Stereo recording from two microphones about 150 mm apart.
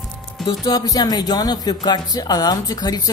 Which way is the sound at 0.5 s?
25° left (ahead or behind).